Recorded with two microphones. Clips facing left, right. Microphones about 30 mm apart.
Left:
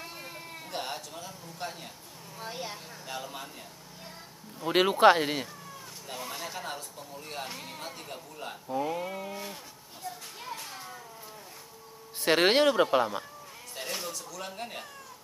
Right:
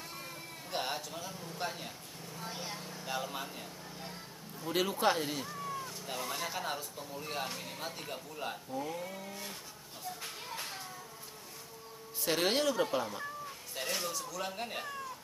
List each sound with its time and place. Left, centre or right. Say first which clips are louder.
0.7 s a man's voice: even; centre
2.3 s speech: left 4 dB; centre
2.7 s speech: even; centre
4.6 s speech: left 10 dB; left
5.5 s a sound: right 6 dB; centre
6.0 s speech: left 2 dB; centre
8.6 s speech: left 7 dB; left
10.5 s children playing: left 3 dB; centre
12.2 s speech: left 8 dB; left
13.7 s speech: even; centre